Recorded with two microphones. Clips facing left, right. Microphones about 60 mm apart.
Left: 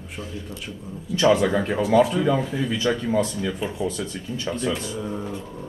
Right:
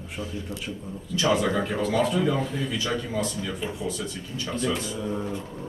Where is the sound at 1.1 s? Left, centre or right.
Left.